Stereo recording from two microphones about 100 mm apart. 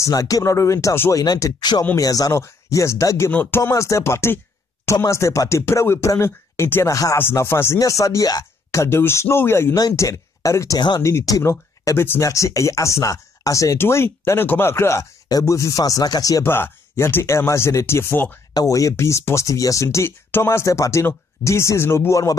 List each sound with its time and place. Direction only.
0.0 s speech: 35° left (ahead or behind)
3.3 s speech: 20° left (ahead or behind)
9.8 s speech: 35° left (ahead or behind)
16.4 s speech: 25° left (ahead or behind)
18.5 s speech: 35° left (ahead or behind)